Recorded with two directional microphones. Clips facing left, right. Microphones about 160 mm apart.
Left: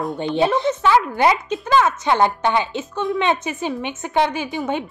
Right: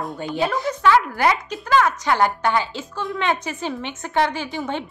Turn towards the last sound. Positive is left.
turn(degrees=15)  # may be behind; listen again after turning